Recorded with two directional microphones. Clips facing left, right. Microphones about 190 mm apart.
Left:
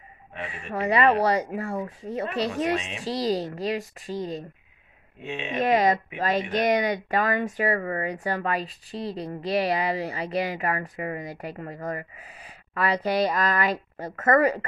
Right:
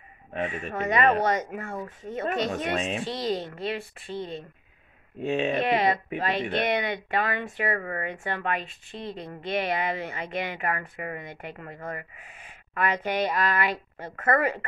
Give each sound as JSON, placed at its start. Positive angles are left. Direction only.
{"t": 0.7, "sound": "speech", "side_deg": 35}
{"t": 5.2, "sound": "speech", "side_deg": -40}
{"t": 5.6, "sound": "speech", "side_deg": 40}